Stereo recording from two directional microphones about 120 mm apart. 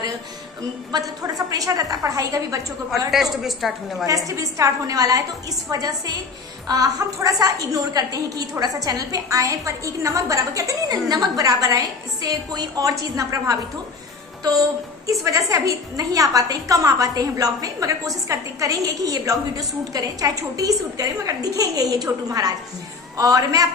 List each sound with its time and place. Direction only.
0.9 s a woman's voice: 30° right (ahead or behind)
3.1 s a woman's voice: centre (ahead or behind)
4.3 s a woman's voice: 25° right (ahead or behind)
15.0 s a woman's voice: 25° right (ahead or behind)